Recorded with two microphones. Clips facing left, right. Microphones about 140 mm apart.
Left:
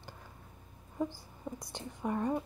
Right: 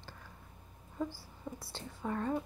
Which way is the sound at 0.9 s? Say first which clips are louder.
Left 3 dB; 15° left (ahead or behind).